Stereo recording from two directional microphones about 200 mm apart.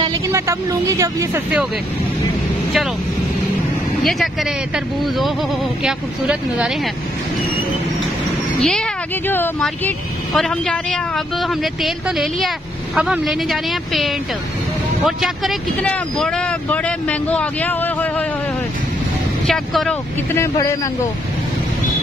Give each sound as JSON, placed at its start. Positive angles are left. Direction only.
{"t": 0.0, "sound": "speech", "side_deg": -15}
{"t": 4.0, "sound": "speech", "side_deg": 0}
{"t": 8.5, "sound": "speech", "side_deg": 0}
{"t": 19.4, "sound": "speech", "side_deg": 0}
{"t": 20.3, "sound": "speech", "side_deg": 15}